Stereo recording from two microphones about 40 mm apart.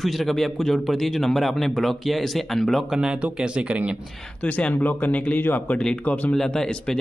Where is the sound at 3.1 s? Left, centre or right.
Right.